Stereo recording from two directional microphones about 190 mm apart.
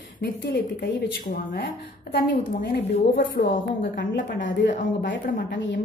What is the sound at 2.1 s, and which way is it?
A woman's voice, 60° left (ahead or behind).